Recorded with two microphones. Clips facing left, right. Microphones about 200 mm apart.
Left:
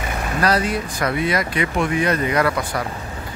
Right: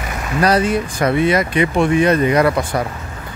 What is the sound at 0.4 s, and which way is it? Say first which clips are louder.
Speech: right 5 dB; 25° right (ahead or behind).